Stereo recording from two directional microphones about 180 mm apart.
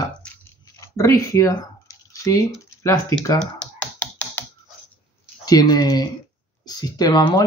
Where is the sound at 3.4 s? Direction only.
5° left (ahead or behind).